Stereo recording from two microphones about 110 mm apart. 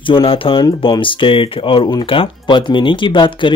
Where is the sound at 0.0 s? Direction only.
50° left (ahead or behind).